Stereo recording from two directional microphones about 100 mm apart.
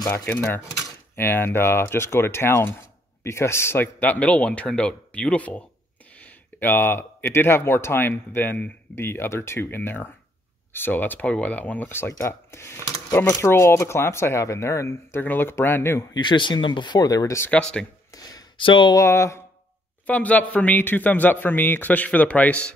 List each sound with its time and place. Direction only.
0.1 s speech: 15° left (ahead or behind)
16.1 s speech: 50° left (ahead or behind); by 17.5 s 35° left (ahead or behind)
17.5 s speech: 10° left (ahead or behind)
18.1 s a sound: 35° left (ahead or behind)
18.6 s speech: 55° left (ahead or behind)
18.9 s speech: 30° left (ahead or behind)
20.1 s speech: 15° left (ahead or behind)